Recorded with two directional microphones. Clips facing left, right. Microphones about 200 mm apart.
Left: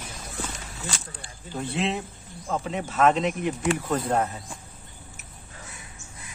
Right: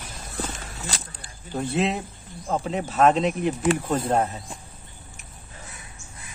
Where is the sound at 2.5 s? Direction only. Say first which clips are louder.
Right 3 dB; 35° right (ahead or behind).